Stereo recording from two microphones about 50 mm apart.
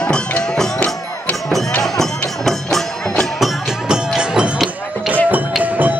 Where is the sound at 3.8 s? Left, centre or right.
Centre.